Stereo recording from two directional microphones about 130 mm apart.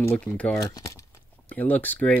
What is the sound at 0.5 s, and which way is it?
Speech, 30° left (ahead or behind).